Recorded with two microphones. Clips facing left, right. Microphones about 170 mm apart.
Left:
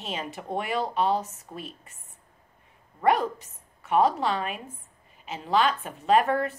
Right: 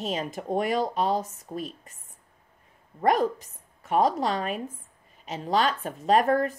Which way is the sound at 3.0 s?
40° right (ahead or behind).